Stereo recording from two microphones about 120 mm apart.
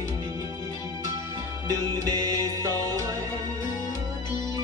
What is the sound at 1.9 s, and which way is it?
Music, 35° right (ahead or behind).